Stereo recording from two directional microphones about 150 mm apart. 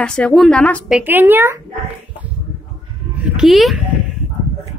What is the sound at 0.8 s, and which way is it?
Speech, 10° right (ahead or behind).